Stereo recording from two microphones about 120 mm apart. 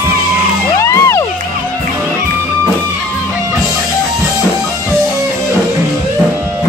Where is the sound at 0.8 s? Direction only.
25° left (ahead or behind).